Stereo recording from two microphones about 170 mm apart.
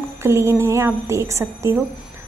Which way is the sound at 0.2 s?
15° right (ahead or behind).